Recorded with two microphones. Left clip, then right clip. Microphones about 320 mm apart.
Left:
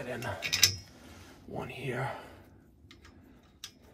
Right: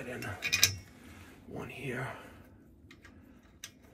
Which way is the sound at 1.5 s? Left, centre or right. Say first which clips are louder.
Left 3 dB; left.